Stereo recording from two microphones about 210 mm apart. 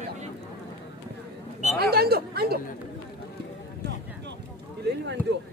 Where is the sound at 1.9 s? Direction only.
50° right (ahead or behind).